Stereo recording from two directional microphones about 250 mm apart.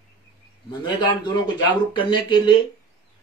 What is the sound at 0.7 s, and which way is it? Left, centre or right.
Speech, centre.